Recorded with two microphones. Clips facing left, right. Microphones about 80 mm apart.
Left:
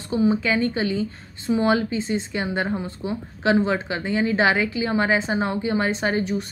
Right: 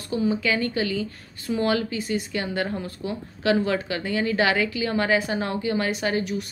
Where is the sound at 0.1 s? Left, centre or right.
Left.